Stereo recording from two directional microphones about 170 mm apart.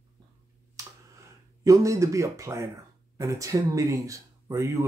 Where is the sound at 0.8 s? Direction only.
20° right (ahead or behind).